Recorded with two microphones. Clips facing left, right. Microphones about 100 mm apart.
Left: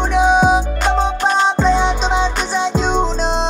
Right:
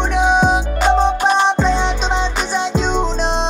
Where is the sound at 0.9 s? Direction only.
15° right (ahead or behind).